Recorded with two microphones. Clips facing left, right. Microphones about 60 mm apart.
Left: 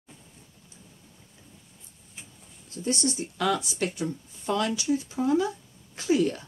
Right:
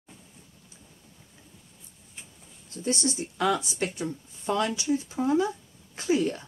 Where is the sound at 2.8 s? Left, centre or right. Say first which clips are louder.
Even; right.